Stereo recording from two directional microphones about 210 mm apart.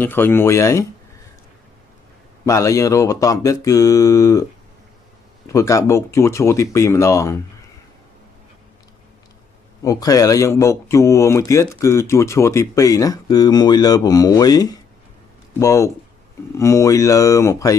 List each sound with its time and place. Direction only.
0.0 s speech: 10° left (ahead or behind)
2.4 s speech: 15° left (ahead or behind)
5.5 s speech: 15° left (ahead or behind)
9.8 s speech: 15° left (ahead or behind)